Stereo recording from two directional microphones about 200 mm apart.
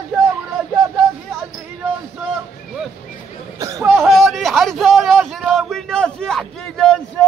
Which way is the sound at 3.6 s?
15° right (ahead or behind).